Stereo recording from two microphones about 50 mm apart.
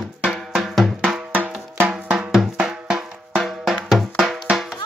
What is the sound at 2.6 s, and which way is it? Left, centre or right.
Drum, centre.